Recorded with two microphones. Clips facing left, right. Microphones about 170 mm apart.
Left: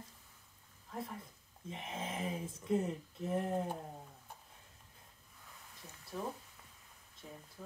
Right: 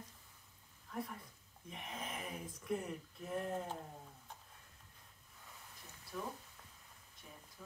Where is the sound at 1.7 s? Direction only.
25° left (ahead or behind).